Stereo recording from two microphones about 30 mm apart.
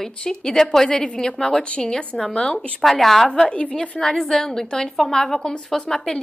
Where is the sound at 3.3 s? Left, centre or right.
Left.